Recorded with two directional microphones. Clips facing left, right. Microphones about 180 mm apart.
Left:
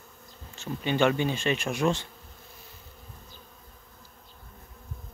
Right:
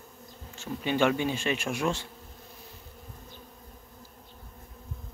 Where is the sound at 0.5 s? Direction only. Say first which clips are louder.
Left 1 dB; 10° right (ahead or behind).